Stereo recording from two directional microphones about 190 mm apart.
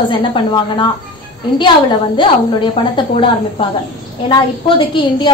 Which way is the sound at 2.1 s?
25° left (ahead or behind).